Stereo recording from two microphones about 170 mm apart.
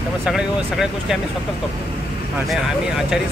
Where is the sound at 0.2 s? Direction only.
5° right (ahead or behind).